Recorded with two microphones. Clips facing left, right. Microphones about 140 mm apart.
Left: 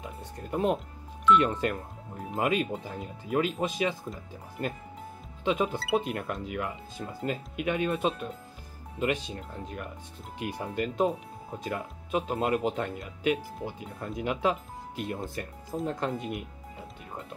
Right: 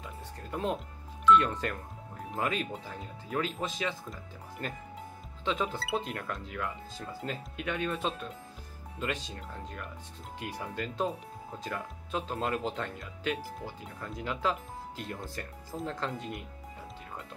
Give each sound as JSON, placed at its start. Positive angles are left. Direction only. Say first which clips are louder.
{"t": 0.0, "sound": "music", "louder": "left 3 dB", "side_deg": 20}
{"t": 1.3, "sound": "speech", "louder": "left 2 dB", "side_deg": 20}
{"t": 13.9, "sound": "speech", "louder": "left 6 dB", "side_deg": 25}
{"t": 14.2, "sound": "speech", "louder": "left 4 dB", "side_deg": 15}